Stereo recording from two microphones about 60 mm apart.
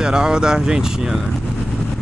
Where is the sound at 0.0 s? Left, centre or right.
Centre.